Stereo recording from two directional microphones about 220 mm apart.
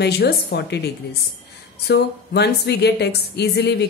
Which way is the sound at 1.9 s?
50° left (ahead or behind).